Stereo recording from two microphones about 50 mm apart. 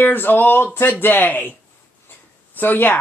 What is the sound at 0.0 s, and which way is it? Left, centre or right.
Speech, left.